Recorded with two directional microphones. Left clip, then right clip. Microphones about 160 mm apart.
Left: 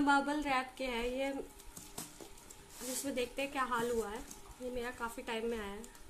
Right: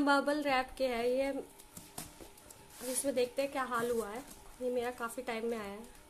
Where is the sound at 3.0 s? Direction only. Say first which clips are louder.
Right 5 dB; 35° right (ahead or behind).